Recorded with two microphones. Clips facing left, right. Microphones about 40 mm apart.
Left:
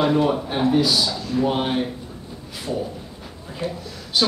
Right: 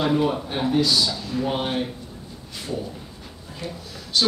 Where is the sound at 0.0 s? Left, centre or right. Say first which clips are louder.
Left 3 dB; centre.